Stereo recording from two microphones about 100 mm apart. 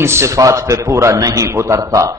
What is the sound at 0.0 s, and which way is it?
A man's voice, 25° right (ahead or behind).